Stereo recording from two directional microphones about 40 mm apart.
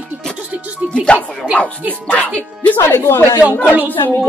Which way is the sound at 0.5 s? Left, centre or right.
Right.